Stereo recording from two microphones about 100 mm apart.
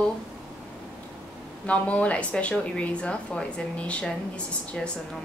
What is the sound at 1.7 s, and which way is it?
A woman's voice, 15° left (ahead or behind).